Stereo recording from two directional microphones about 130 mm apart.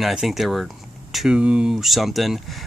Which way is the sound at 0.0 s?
Centre (ahead or behind).